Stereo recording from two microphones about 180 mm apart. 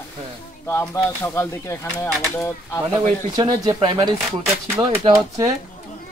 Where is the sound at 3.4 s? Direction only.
20° right (ahead or behind).